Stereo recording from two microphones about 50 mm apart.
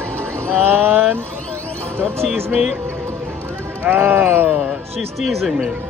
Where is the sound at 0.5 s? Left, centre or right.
Right.